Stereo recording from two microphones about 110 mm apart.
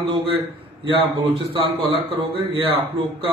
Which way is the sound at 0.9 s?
55° right (ahead or behind).